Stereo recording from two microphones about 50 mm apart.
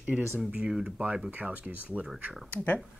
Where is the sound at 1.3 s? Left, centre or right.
Right.